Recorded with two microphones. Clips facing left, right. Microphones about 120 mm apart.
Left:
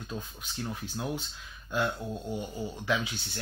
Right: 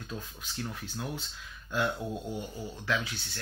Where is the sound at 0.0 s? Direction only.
15° left (ahead or behind).